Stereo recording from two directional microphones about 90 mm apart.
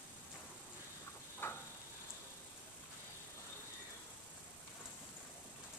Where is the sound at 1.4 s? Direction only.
25° left (ahead or behind).